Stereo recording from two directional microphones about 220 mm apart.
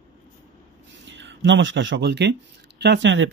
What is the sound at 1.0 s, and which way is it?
Speech, 55° right (ahead or behind).